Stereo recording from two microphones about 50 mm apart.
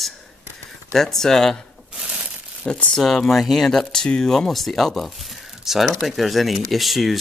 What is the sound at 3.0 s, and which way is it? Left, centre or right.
Speech, centre.